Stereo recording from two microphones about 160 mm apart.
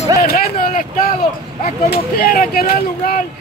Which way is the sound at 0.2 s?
65° left (ahead or behind).